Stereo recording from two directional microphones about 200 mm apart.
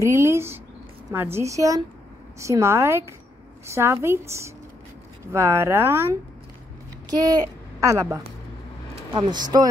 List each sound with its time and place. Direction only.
0.0 s speech: 15° right (ahead or behind)